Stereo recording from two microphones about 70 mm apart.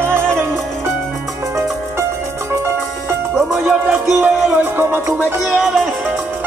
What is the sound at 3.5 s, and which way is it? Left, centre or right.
Music, centre.